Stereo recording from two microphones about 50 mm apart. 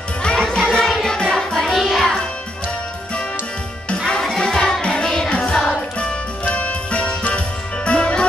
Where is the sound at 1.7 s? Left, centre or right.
Centre.